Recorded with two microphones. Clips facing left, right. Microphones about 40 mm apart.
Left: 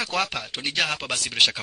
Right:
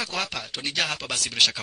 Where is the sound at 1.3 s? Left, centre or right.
Centre.